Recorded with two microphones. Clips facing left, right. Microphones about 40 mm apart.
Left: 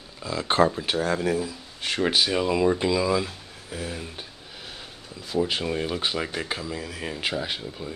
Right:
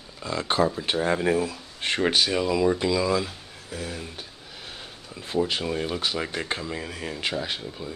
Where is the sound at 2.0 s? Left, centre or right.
Centre.